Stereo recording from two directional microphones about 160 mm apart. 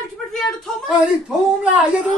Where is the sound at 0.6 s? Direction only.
Centre (ahead or behind).